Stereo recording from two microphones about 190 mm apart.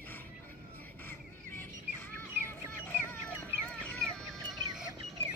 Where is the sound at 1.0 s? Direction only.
10° left (ahead or behind).